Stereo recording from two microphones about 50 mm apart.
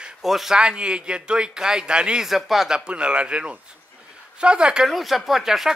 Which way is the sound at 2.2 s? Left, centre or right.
Centre.